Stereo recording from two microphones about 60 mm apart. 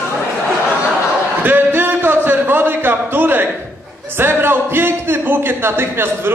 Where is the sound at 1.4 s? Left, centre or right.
Right.